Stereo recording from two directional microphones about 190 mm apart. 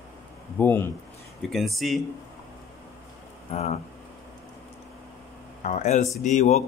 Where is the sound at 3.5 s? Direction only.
35° left (ahead or behind).